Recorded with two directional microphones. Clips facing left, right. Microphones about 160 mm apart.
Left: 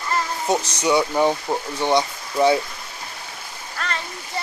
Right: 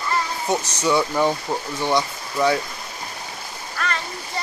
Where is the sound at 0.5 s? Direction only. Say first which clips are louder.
Left 1 dB; 15° left (ahead or behind).